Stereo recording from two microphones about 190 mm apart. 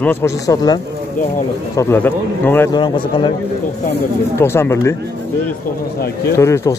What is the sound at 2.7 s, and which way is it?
Speech, 25° left (ahead or behind).